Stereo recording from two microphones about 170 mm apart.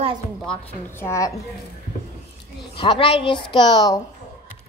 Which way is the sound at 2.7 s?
30° left (ahead or behind).